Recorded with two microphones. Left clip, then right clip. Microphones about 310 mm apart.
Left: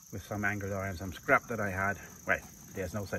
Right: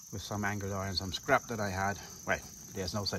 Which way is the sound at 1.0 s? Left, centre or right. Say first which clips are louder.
Left 2 dB; centre.